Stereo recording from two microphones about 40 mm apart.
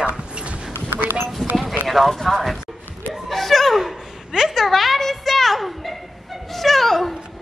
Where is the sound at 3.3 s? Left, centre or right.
Centre.